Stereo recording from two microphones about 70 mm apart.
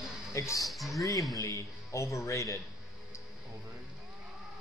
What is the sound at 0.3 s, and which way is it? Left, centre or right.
Speech, left.